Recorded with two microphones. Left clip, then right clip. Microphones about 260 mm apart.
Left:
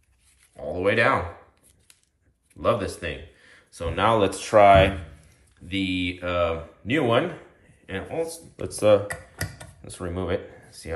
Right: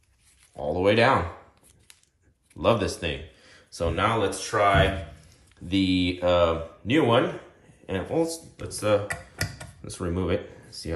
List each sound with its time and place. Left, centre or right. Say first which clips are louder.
0.7 s speech: right 1 dB; centre
2.5 s speech: right 1 dB; centre
4.2 s speech: left 6 dB; centre
5.7 s speech: right 2 dB; centre
8.6 s speech: left 5 dB; centre